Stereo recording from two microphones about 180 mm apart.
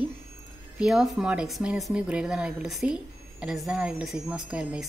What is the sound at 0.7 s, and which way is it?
Speech, 5° right (ahead or behind).